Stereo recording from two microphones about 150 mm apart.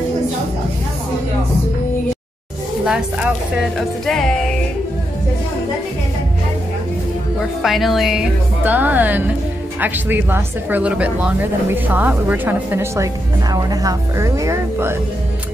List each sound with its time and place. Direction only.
2.8 s a woman's voice: 5° right (ahead or behind)
7.6 s a woman's voice: centre (ahead or behind); by 15.0 s 20° right (ahead or behind)